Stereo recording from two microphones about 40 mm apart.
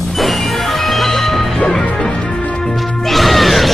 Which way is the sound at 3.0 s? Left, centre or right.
Centre.